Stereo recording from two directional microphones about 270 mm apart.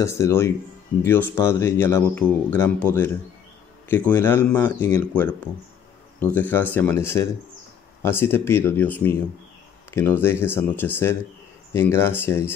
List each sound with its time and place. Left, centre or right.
0.0 s speech: centre